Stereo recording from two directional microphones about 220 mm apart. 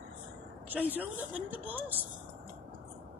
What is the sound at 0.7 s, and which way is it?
A woman's voice, 5° right (ahead or behind).